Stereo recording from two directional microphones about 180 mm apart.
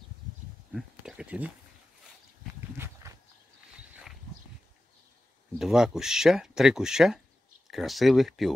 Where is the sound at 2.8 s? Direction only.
15° right (ahead or behind).